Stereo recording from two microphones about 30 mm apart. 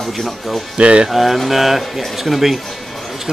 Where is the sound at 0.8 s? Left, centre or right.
Right.